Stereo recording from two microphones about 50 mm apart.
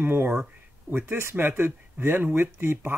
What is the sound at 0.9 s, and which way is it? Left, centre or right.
Speech, right.